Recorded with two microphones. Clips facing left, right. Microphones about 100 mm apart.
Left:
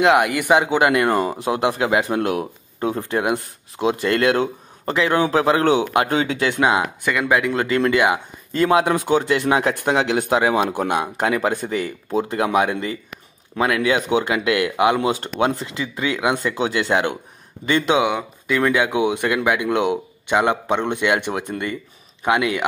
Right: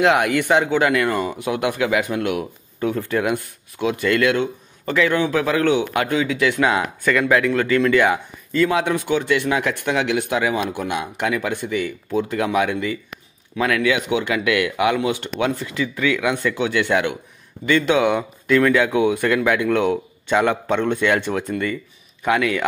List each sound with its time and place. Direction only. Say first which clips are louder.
0.0 s speech: left 1 dB; centre (ahead or behind); by 1.0 s 20° left (ahead or behind)
1.0 s speech: left 2 dB; 40° left (ahead or behind)
3.0 s speech: even; 25° left (ahead or behind)
7.5 s speech: right 1 dB; 25° left (ahead or behind)
8.6 s speech: left 5 dB; 45° left (ahead or behind)
12.1 s speech: left 1 dB; 25° left (ahead or behind)
13.9 s speech: left 2 dB; 35° left (ahead or behind)
17.6 s speech: right 1 dB; 20° left (ahead or behind)
18.0 s speech: right 2 dB; 5° left (ahead or behind)
18.6 s speech: right 1 dB; 20° left (ahead or behind)